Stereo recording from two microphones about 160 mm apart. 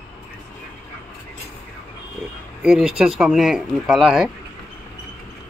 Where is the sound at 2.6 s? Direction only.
5° right (ahead or behind).